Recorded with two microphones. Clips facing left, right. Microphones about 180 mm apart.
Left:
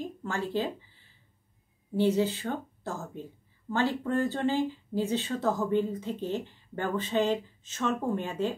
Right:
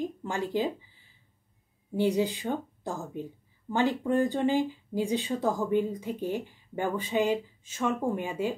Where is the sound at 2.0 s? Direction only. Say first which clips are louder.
Left 1 dB; 15° right (ahead or behind).